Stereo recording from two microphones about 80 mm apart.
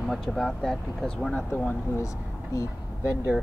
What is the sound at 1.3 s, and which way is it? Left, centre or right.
Speech, left.